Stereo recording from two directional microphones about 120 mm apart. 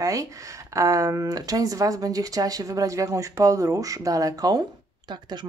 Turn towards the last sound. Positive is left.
turn(degrees=-40)  # may be behind; listen again after turning